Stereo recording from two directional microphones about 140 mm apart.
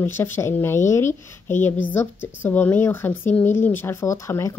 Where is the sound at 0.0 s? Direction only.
15° left (ahead or behind).